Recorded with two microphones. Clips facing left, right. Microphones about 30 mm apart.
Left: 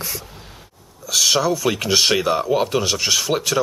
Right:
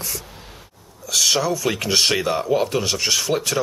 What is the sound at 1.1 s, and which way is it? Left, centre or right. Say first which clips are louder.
Speech: left 2 dB; centre.